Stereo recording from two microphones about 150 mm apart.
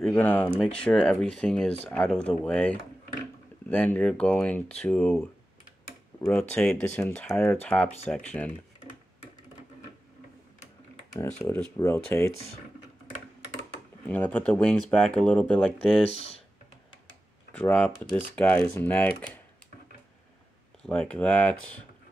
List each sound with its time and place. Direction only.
0.0 s speech: 10° left (ahead or behind)
11.7 s speech: 20° left (ahead or behind)
14.0 s speech: 10° left (ahead or behind)
16.1 s speech: 45° left (ahead or behind)
17.5 s speech: 10° left (ahead or behind)
20.8 s speech: 5° left (ahead or behind)